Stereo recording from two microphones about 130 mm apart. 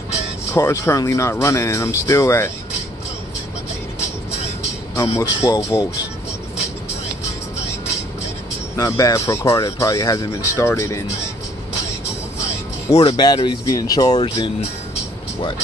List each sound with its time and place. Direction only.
0.5 s speech: 25° left (ahead or behind)
4.9 s speech: 20° left (ahead or behind)
8.7 s speech: 25° left (ahead or behind)
12.9 s speech: 35° left (ahead or behind)